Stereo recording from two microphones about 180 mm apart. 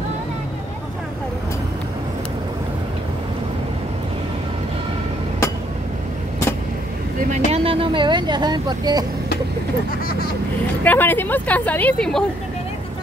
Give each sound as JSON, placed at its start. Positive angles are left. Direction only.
{"t": 7.2, "sound": "speech", "side_deg": -35}
{"t": 10.8, "sound": "speech", "side_deg": 10}